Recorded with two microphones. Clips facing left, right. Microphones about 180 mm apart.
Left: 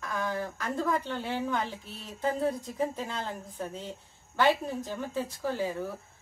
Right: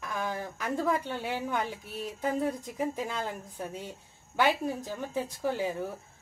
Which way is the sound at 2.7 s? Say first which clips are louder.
Even; 10° right (ahead or behind).